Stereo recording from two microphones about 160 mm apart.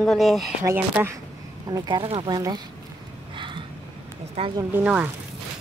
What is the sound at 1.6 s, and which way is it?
Speech, 30° right (ahead or behind).